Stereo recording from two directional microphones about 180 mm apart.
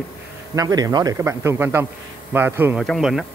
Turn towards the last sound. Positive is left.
turn(degrees=0)  # may be behind; listen again after turning